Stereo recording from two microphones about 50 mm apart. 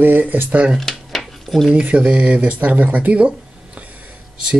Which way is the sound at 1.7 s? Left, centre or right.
Right.